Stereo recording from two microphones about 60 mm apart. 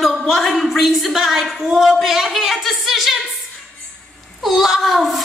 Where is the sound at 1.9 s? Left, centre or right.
Centre.